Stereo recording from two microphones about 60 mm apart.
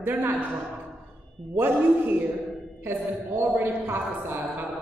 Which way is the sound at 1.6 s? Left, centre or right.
Right.